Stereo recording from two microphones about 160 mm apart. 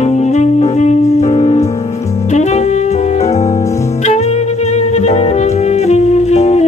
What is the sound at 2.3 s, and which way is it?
Saxophone, 45° left (ahead or behind).